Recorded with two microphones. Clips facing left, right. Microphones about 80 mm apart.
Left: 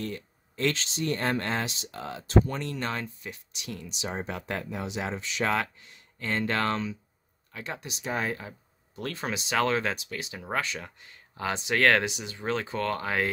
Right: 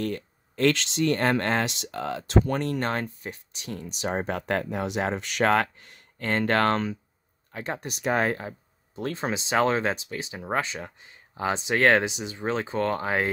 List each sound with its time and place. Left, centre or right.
0.0 s speech: right
2.6 s speech: right
7.5 s speech: right
7.9 s speech: right
8.9 s speech: right